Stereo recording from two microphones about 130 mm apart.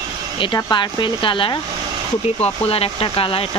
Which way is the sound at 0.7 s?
35° left (ahead or behind).